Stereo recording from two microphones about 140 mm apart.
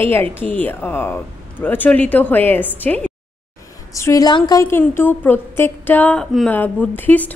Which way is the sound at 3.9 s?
25° left (ahead or behind).